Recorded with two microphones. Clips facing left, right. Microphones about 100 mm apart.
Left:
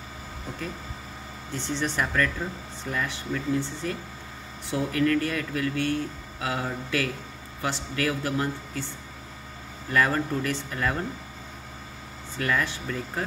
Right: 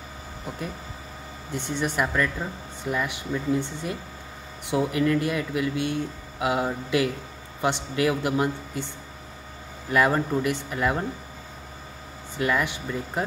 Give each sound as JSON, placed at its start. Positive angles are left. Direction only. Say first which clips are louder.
{"t": 1.5, "sound": "speech", "louder": "right 1 dB", "side_deg": -15}
{"t": 12.4, "sound": "speech", "louder": "right 2 dB", "side_deg": -15}